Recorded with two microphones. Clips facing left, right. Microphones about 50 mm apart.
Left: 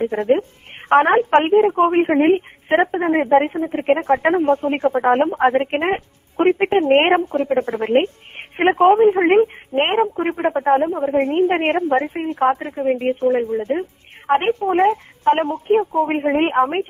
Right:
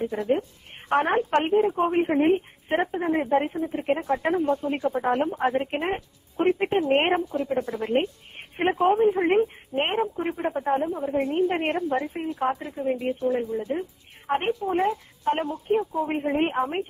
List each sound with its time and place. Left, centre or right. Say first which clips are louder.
0.0 s a woman's voice: left 7 dB; left